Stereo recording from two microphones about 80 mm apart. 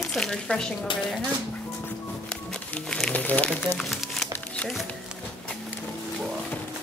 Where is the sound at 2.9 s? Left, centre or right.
Centre.